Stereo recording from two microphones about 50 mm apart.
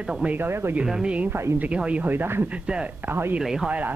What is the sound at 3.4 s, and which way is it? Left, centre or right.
Speech, centre.